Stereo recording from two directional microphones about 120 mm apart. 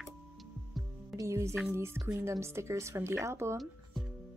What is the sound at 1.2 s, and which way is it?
Speech, 25° right (ahead or behind).